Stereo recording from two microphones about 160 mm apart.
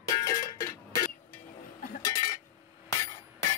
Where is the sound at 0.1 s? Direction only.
20° left (ahead or behind).